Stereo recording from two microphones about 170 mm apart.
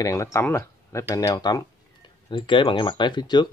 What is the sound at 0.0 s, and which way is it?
Speech, 15° left (ahead or behind).